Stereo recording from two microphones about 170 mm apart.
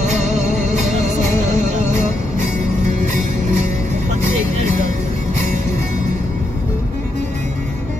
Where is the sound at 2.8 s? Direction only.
50° right (ahead or behind).